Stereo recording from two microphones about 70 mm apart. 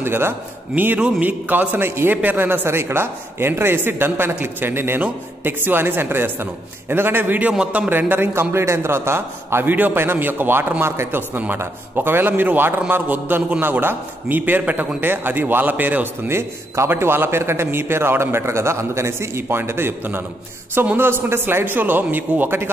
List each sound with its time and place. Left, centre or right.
0.0 s a man's voice: right
0.9 s a man's voice: right
7.5 s speech: centre
7.9 s a man's voice: right